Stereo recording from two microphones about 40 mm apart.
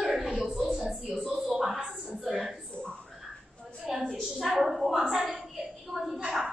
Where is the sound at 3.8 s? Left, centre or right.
Centre.